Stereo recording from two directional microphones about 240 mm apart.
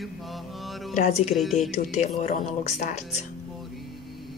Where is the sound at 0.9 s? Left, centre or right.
Left.